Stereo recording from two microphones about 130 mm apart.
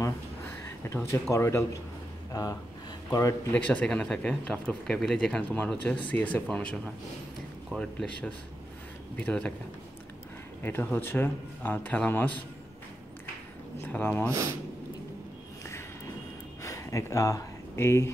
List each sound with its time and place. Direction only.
0.7 s a man's voice: 20° left (ahead or behind)
3.5 s speech: 10° left (ahead or behind)
9.1 s speech: 10° left (ahead or behind)
10.6 s speech: 15° left (ahead or behind)
13.7 s speech: 15° left (ahead or behind)
14.3 s speech: 25° right (ahead or behind)
16.6 s speech: 25° left (ahead or behind)